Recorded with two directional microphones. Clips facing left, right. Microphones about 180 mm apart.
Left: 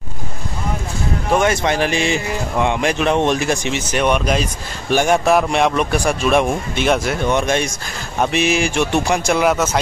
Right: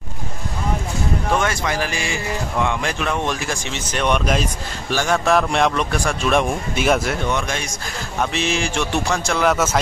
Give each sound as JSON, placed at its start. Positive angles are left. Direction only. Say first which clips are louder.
{"t": 1.3, "sound": "speech", "louder": "left 7 dB", "side_deg": 20}
{"t": 4.9, "sound": "speech", "louder": "left 5 dB", "side_deg": 20}
{"t": 5.3, "sound": "a man's voice", "louder": "left 2 dB", "side_deg": 5}
{"t": 6.7, "sound": "speech", "louder": "left 1 dB", "side_deg": -5}
{"t": 7.3, "sound": "a man's voice", "louder": "left 7 dB", "side_deg": 20}